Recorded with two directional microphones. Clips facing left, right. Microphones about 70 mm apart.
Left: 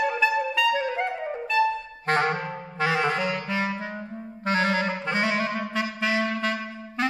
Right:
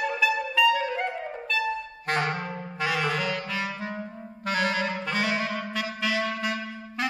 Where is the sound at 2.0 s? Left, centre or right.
Left.